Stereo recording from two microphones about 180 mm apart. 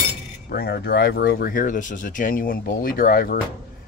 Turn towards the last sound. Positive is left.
turn(degrees=55)  # may be behind; listen again after turning